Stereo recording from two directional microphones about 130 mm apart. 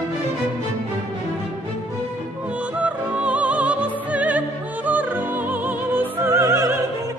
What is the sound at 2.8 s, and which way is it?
Music, 10° right (ahead or behind).